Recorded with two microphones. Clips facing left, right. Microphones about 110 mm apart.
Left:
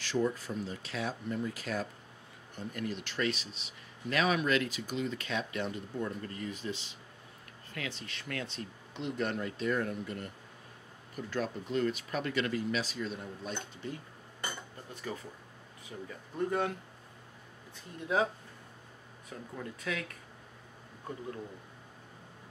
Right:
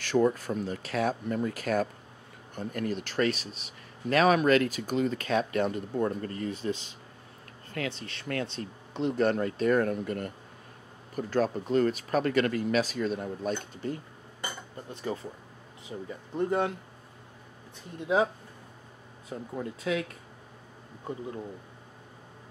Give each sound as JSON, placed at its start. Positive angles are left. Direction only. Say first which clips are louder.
{"t": 0.0, "sound": "speech", "louder": "right 7 dB", "side_deg": -55}
{"t": 8.0, "sound": "speech", "louder": "right 6 dB", "side_deg": -45}
{"t": 14.9, "sound": "speech", "louder": "right 7 dB", "side_deg": -25}
{"t": 18.0, "sound": "speech", "louder": "right 5 dB", "side_deg": -20}